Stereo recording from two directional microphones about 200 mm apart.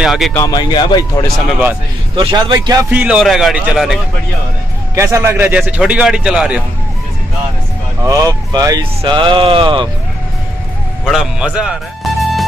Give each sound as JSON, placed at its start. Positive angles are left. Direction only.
{"t": 0.0, "sound": "speech", "side_deg": 0}
{"t": 0.3, "sound": "speech", "side_deg": 15}
{"t": 2.1, "sound": "speech", "side_deg": -25}
{"t": 3.0, "sound": "speech", "side_deg": -5}
{"t": 4.9, "sound": "a man's voice", "side_deg": -15}
{"t": 8.0, "sound": "speech", "side_deg": -15}
{"t": 11.1, "sound": "speech", "side_deg": -5}